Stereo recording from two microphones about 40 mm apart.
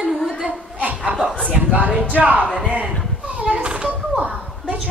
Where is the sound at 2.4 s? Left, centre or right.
Centre.